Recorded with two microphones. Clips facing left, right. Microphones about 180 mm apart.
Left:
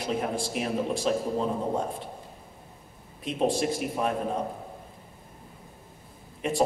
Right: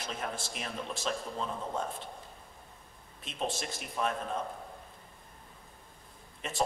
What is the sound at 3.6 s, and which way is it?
Speech, 10° left (ahead or behind).